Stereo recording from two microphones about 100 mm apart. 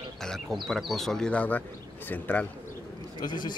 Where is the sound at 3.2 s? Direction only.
45° left (ahead or behind).